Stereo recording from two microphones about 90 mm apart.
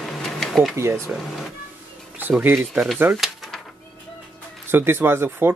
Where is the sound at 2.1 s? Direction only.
20° right (ahead or behind).